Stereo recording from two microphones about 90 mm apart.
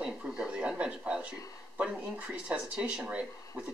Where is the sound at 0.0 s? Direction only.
10° right (ahead or behind).